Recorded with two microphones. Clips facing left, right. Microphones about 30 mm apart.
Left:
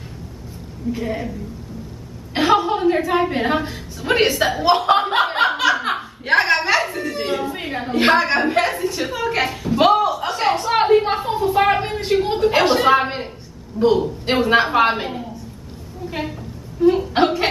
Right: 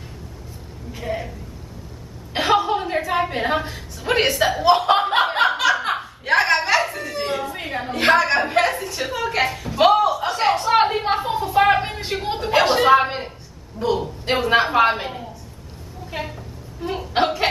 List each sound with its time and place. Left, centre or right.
0.9 s a woman's voice: centre
2.3 s a woman's voice: centre
4.5 s chuckle: centre
6.2 s a sound: centre
8.8 s chuckle: centre
12.4 s a woman's voice: centre